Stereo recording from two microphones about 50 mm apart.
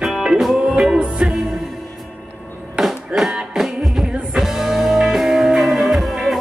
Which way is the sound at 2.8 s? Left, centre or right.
Centre.